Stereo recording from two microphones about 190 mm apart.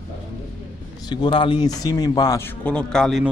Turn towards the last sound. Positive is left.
turn(degrees=0)  # may be behind; listen again after turning